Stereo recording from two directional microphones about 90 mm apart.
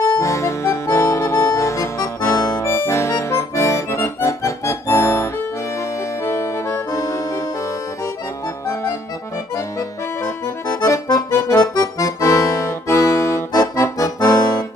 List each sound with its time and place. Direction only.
0.2 s accordion: 35° left (ahead or behind)
2.6 s accordion: 30° left (ahead or behind)
6.9 s music: 40° left (ahead or behind)
10.2 s accordion: 35° left (ahead or behind)